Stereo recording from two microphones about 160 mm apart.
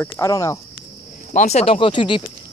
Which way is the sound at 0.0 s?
15° left (ahead or behind).